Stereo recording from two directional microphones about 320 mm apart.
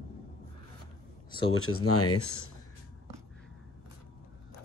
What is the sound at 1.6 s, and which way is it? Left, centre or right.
Speech, left.